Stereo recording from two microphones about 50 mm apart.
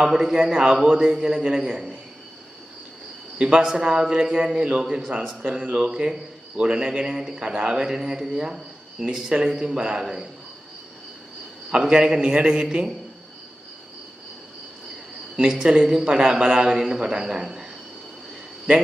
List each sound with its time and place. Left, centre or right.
0.0 s speech: centre
3.3 s a man's voice: centre
11.7 s speech: centre
15.4 s speech: centre